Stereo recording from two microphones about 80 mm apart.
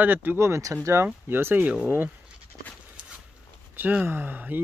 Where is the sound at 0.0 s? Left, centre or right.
Right.